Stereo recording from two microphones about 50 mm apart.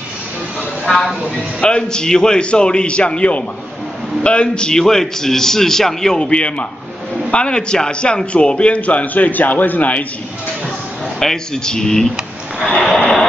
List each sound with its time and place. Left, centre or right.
0.9 s vehicle: centre
1.6 s a man's voice: centre
11.1 s a man's voice: centre
12.9 s vehicle: centre